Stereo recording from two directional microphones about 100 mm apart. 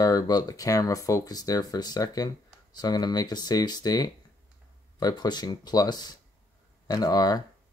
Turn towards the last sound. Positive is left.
turn(degrees=40)  # may be behind; listen again after turning